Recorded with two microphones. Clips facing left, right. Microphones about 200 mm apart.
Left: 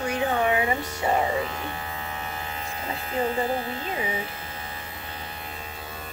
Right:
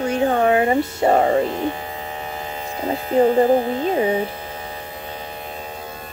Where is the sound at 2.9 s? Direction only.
45° right (ahead or behind).